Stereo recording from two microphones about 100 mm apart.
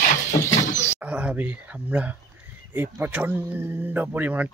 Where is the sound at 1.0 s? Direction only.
15° right (ahead or behind).